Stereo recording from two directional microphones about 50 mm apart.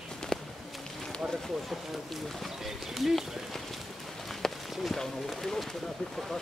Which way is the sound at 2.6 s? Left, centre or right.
Centre.